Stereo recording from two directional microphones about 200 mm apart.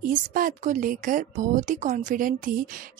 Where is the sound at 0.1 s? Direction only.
40° right (ahead or behind).